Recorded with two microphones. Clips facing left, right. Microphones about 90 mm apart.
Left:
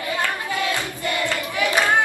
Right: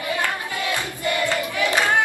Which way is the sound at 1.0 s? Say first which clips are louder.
Right 5 dB; 20° right (ahead or behind).